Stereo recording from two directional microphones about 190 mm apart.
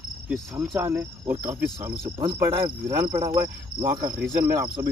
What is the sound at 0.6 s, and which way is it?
Insect, 15° right (ahead or behind).